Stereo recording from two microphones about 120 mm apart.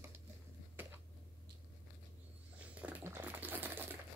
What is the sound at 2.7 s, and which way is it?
Typewriter, 10° right (ahead or behind).